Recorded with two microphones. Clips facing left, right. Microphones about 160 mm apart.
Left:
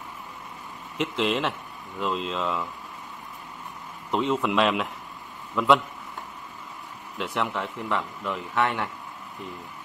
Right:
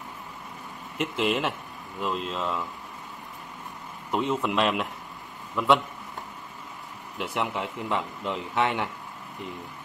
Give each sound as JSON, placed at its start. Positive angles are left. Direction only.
{"t": 0.9, "sound": "a man's voice", "side_deg": -5}
{"t": 4.1, "sound": "a man's voice", "side_deg": 0}
{"t": 7.2, "sound": "a man's voice", "side_deg": -10}